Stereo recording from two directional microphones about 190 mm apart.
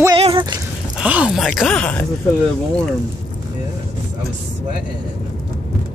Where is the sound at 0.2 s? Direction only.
30° right (ahead or behind).